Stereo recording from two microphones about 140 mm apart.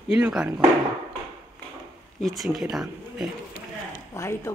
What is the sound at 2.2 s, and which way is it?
Speech, centre (ahead or behind).